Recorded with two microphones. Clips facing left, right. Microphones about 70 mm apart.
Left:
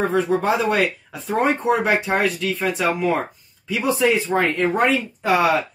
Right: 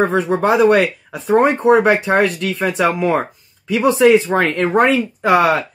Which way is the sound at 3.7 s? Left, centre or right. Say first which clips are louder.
Right 8 dB; right.